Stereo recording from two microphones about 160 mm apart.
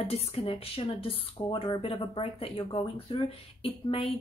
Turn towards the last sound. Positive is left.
turn(degrees=35)  # may be behind; listen again after turning